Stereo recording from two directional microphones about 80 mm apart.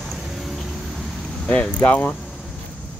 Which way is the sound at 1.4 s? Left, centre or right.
Centre.